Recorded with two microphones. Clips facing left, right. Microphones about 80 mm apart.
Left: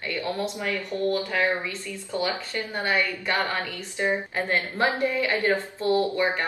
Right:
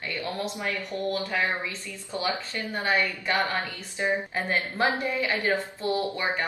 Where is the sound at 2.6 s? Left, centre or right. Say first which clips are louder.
Left 1 dB; right.